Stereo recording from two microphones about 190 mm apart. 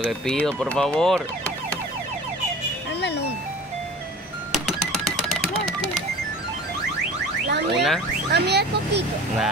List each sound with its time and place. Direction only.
0.3 s speech: 5° left (ahead or behind)
3.0 s speech: 60° left (ahead or behind)
7.7 s speech: centre (ahead or behind)
8.3 s speech: 60° right (ahead or behind)